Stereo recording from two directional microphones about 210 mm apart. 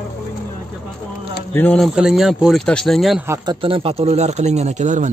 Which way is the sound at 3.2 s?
15° right (ahead or behind).